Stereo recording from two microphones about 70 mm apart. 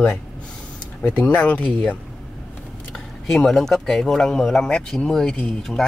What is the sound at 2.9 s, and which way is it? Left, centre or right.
Speech, centre.